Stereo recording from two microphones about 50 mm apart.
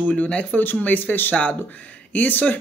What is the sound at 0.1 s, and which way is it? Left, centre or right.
Speech, left.